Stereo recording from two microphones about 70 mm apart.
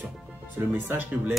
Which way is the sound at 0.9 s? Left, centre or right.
Right.